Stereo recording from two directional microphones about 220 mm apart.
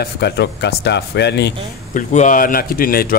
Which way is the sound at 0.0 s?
50° left (ahead or behind).